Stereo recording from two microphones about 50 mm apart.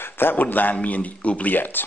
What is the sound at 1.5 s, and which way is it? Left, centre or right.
Speech, left.